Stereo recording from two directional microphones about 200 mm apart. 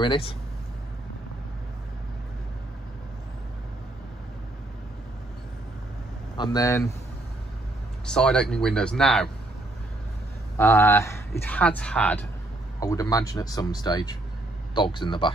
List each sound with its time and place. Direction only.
0.0 s speech: 25° left (ahead or behind)
6.3 s speech: 20° left (ahead or behind)
8.1 s speech: 5° left (ahead or behind)
10.6 s speech: 15° left (ahead or behind)